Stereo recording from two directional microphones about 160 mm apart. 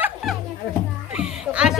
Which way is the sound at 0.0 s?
Centre (ahead or behind).